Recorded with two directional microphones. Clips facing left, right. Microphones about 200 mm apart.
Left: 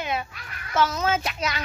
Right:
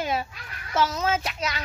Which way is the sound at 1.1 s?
30° right (ahead or behind).